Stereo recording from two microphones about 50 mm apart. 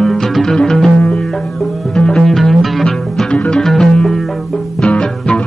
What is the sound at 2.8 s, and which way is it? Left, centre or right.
Music, centre.